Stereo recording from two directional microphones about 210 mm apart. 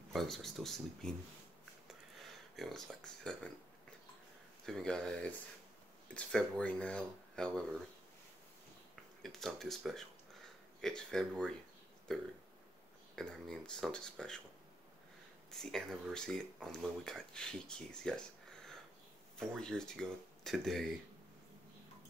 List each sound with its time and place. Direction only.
0.1 s speech: centre (ahead or behind)
2.5 s speech: centre (ahead or behind)
4.6 s speech: centre (ahead or behind)
9.2 s speech: centre (ahead or behind)
15.5 s speech: centre (ahead or behind)